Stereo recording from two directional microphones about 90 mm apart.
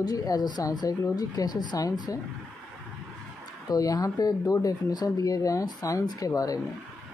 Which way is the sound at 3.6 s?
45° left (ahead or behind).